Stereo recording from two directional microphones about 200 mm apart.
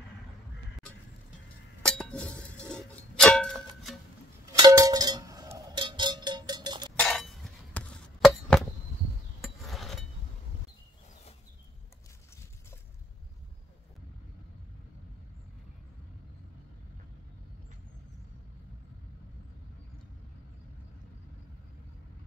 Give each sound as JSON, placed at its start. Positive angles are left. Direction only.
{"t": 1.9, "sound": "chink", "side_deg": 5}
{"t": 2.7, "sound": "music", "side_deg": 5}
{"t": 4.5, "sound": "music", "side_deg": -20}
{"t": 5.7, "sound": "cowbell", "side_deg": -25}
{"t": 7.0, "sound": "chop", "side_deg": 0}
{"t": 9.4, "sound": "a sound", "side_deg": 0}